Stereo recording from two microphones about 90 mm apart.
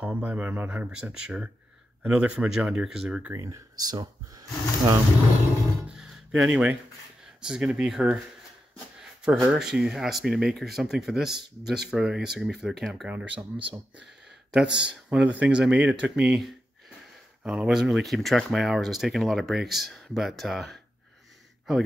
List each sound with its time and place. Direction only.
0.0 s speech: 15° right (ahead or behind)
3.3 s speech: 35° right (ahead or behind)
5.9 s music: 5° right (ahead or behind)
7.4 s speech: 10° right (ahead or behind)
9.2 s speech: 5° right (ahead or behind)
13.1 s speech: 20° right (ahead or behind)
14.5 s speech: 10° right (ahead or behind)